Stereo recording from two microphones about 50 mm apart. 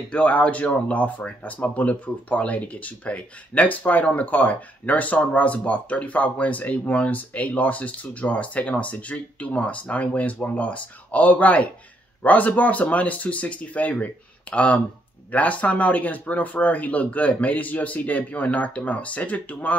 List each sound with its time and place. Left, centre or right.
0.1 s speech: left